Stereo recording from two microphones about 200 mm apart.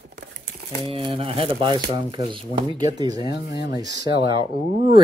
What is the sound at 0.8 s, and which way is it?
Speech, 25° right (ahead or behind).